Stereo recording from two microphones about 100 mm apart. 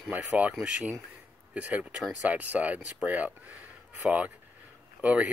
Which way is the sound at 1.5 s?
15° right (ahead or behind).